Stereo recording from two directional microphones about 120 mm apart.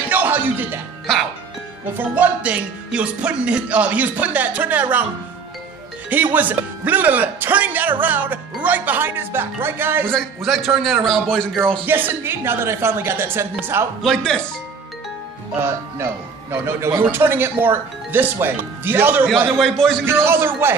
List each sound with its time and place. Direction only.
0.1 s music: 15° right (ahead or behind)
2.0 s a man's voice: 15° right (ahead or behind)
6.0 s a man's voice: 15° right (ahead or behind)
10.1 s a man's voice: centre (ahead or behind)
11.8 s speech: 15° right (ahead or behind)
14.0 s speech: 5° left (ahead or behind)
15.6 s a man's voice: 20° right (ahead or behind)
19.6 s a man's voice: 5° left (ahead or behind)
20.1 s speech: 20° right (ahead or behind)